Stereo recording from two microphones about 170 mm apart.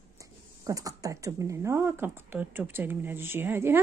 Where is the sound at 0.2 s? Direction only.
20° right (ahead or behind).